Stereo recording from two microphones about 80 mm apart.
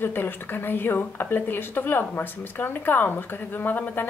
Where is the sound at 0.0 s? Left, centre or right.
Left.